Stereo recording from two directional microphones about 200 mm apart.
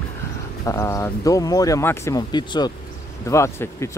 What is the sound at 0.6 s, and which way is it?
Speech, 15° left (ahead or behind).